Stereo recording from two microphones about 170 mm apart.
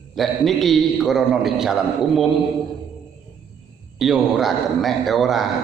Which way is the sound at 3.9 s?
Centre (ahead or behind).